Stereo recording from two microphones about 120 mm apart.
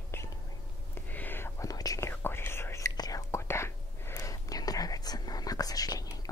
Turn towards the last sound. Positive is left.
turn(degrees=30)  # may be behind; listen again after turning